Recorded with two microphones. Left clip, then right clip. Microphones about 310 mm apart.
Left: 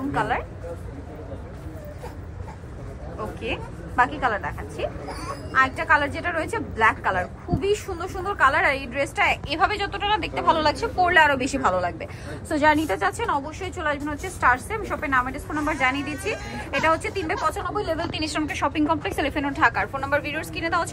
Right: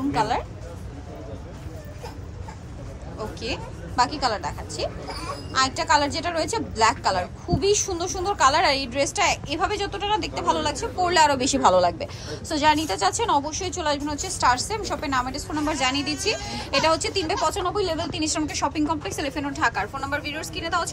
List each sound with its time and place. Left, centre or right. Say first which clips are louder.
0.1 s speech: even; centre
3.4 s a woman's voice: left 1 dB; centre
12.4 s a woman's voice: left 1 dB; centre